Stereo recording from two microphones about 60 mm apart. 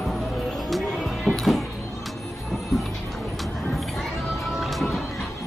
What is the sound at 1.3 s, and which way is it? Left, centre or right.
Music, centre.